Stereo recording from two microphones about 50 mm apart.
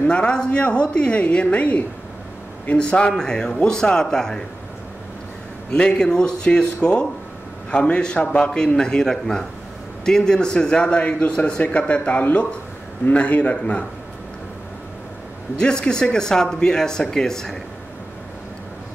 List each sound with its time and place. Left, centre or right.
0.1 s speech: left
5.7 s a man's voice: centre
15.5 s speech: centre